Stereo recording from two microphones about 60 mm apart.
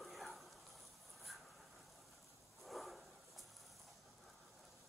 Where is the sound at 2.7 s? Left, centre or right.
Centre.